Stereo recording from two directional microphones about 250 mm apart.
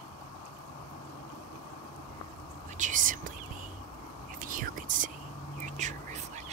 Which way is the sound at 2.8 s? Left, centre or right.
Right.